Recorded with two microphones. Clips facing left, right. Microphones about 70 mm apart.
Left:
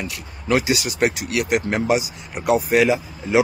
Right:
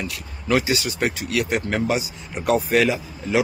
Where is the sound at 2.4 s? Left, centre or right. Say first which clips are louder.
Left 1 dB; centre.